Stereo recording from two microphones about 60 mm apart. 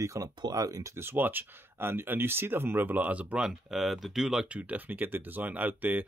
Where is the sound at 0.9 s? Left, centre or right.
Right.